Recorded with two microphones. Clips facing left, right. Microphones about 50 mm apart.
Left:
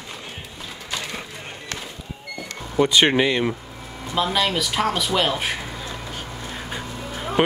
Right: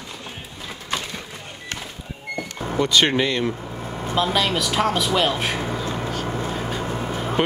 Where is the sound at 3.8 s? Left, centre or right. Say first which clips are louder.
Right 5 dB; right.